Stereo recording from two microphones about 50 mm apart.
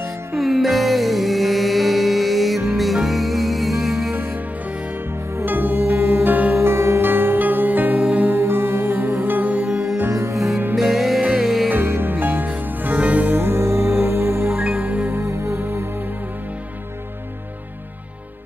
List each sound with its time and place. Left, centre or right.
0.4 s music: centre
5.4 s music: right
6.5 s music: right
7.1 s music: right
8.3 s music: right
9.7 s music: centre
10.1 s music: right
10.8 s music: centre
11.8 s music: right
12.1 s music: right
13.4 s music: right
14.5 s music: right
15.2 s music: right